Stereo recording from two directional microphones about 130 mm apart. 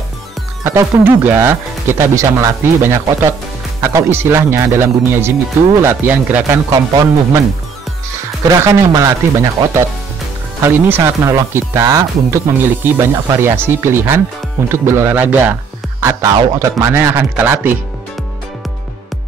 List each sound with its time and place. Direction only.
0.7 s speech: 20° right (ahead or behind)
6.7 s speech: 25° right (ahead or behind)
8.5 s speech: 25° right (ahead or behind)